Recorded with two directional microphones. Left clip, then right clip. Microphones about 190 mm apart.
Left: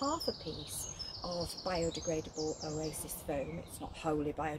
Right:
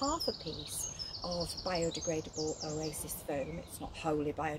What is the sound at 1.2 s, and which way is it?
Speech, 10° right (ahead or behind).